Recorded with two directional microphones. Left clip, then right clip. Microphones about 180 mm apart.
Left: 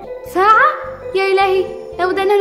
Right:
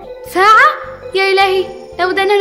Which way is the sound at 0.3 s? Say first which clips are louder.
Right 3 dB; 5° right (ahead or behind).